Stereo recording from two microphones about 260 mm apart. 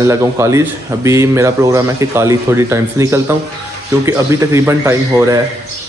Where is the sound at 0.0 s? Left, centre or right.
Centre.